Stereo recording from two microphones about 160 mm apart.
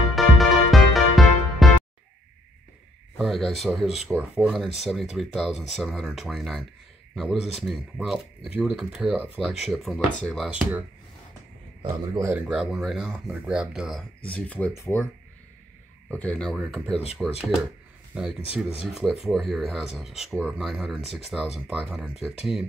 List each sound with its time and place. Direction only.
0.1 s music: centre (ahead or behind)
3.2 s speech: centre (ahead or behind)
12.1 s speech: 20° right (ahead or behind)
12.4 s speech: 5° right (ahead or behind); by 15.0 s 15° left (ahead or behind)
16.1 s speech: 10° left (ahead or behind)